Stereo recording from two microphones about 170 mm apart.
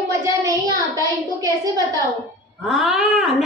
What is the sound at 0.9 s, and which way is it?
Speech, 20° right (ahead or behind).